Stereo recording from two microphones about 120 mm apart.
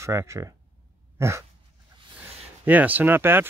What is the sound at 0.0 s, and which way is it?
Speech, 25° right (ahead or behind).